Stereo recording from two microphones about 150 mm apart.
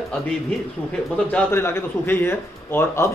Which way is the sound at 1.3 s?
15° left (ahead or behind).